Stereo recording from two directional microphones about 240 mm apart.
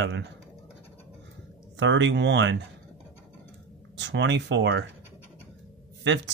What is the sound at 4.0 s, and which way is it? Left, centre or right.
Speech, right.